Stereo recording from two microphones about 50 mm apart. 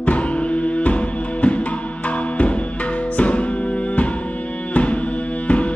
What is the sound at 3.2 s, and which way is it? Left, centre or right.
Music, left.